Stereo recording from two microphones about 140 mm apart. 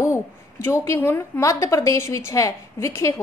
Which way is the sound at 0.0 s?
20° left (ahead or behind).